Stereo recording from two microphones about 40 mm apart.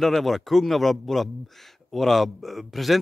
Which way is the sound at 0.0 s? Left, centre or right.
Centre.